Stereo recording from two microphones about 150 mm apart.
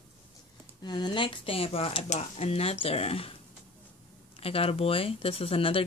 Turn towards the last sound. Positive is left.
turn(degrees=40)  # may be behind; listen again after turning